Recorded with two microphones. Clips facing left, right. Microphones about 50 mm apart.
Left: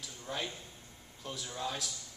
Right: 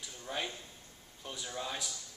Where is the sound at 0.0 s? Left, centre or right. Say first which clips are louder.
Even; centre.